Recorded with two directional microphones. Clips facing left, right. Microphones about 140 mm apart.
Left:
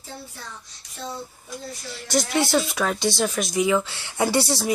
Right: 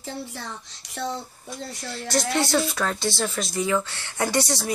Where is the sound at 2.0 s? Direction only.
Centre (ahead or behind).